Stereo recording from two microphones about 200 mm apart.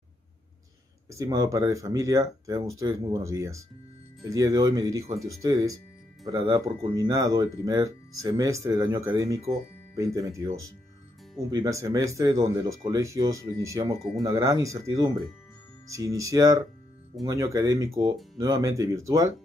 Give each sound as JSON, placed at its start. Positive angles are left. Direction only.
{"t": 1.1, "sound": "speech", "side_deg": -15}
{"t": 11.5, "sound": "speech", "side_deg": -15}